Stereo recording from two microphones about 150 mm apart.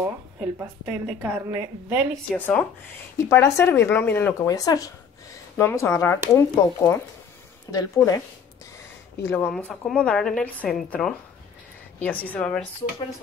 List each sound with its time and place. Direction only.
0.6 s a woman's voice: 15° right (ahead or behind)
2.3 s speech: 10° left (ahead or behind)
9.2 s a woman's voice: 15° left (ahead or behind)